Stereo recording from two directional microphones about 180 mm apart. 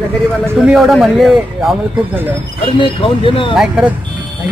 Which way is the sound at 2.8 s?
30° left (ahead or behind).